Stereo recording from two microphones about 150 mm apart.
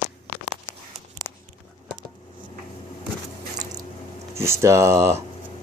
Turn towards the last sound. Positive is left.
turn(degrees=-20)  # may be behind; listen again after turning